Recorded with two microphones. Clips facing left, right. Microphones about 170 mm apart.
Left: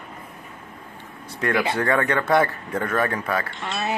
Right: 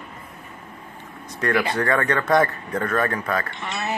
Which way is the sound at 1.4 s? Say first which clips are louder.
Even; 15° left (ahead or behind).